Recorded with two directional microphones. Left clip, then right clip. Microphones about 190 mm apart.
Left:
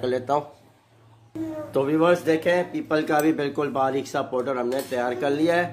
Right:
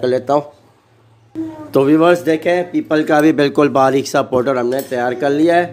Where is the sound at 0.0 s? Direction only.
35° right (ahead or behind).